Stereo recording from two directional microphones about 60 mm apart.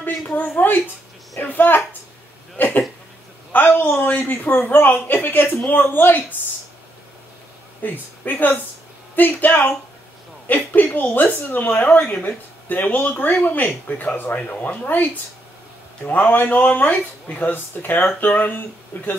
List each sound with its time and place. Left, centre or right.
0.6 s a woman's voice: left
7.8 s a woman's voice: left
16.1 s speech: left